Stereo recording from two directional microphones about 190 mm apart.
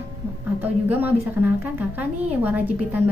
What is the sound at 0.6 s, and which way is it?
A woman's voice, 10° right (ahead or behind).